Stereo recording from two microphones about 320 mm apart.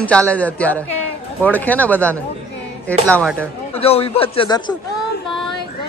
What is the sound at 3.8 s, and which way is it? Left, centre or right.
Speech, centre.